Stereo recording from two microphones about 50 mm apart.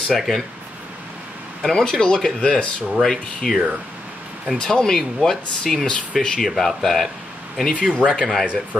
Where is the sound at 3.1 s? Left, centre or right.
Centre.